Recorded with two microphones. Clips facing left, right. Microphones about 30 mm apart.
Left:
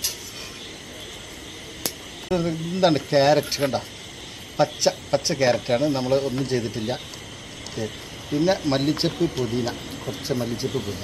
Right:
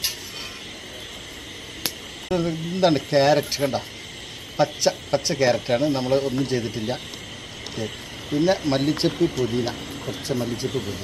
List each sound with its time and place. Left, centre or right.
2.2 s a man's voice: centre
9.8 s a sound: centre
10.2 s a man's voice: centre